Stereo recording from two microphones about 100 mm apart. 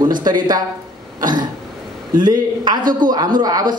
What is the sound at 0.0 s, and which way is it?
Speech, 45° right (ahead or behind).